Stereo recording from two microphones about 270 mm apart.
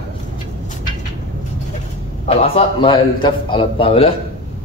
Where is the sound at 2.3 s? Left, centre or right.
Centre.